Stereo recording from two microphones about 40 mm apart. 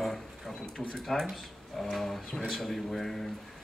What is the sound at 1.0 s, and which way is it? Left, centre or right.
Speech, centre.